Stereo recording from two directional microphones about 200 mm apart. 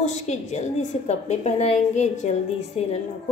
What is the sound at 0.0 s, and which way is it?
A woman's voice, 35° left (ahead or behind).